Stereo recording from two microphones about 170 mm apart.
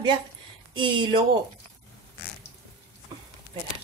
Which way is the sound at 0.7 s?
30° right (ahead or behind).